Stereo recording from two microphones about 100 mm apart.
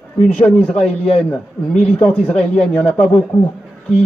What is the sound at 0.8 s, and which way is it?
Speech, centre (ahead or behind).